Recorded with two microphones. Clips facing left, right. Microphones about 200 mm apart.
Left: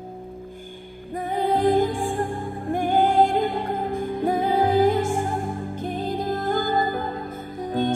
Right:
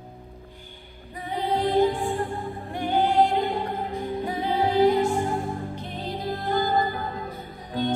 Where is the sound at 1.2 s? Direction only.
50° left (ahead or behind).